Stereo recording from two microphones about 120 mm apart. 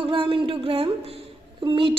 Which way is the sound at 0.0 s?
45° right (ahead or behind).